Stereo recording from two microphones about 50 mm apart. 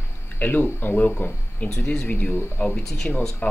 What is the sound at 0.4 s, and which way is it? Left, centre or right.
Speech, left.